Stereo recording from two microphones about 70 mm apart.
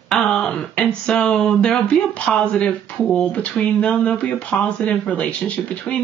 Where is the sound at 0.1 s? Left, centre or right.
Centre.